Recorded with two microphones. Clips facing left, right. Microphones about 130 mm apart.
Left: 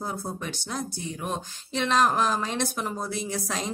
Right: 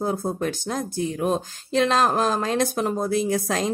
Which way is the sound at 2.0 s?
40° right (ahead or behind).